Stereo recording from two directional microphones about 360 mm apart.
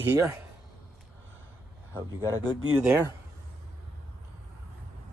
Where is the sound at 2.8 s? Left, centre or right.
Centre.